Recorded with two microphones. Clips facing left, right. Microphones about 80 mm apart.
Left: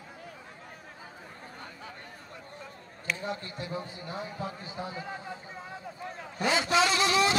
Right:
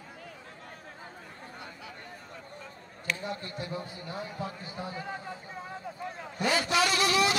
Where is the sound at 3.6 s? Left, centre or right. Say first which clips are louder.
Left 3 dB; left.